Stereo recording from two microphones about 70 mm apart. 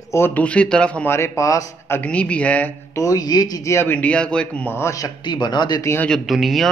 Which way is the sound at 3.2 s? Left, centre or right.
Left.